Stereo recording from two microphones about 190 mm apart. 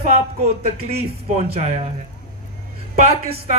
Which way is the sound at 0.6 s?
30° right (ahead or behind).